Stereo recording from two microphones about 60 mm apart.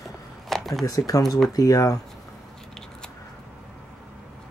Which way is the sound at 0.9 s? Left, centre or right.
Left.